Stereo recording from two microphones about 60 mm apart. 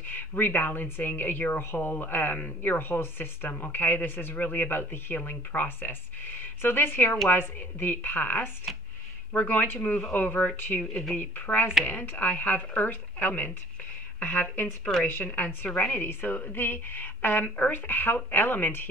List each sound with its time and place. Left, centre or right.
0.1 s speech: left
1.6 s speech: left
15.9 s speech: left